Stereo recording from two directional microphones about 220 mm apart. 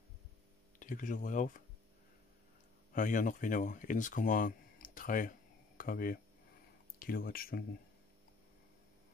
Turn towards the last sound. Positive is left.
turn(degrees=40)  # may be behind; listen again after turning